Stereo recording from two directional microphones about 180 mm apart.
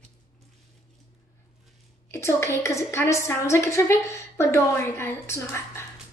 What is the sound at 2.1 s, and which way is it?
A woman's voice, 15° left (ahead or behind).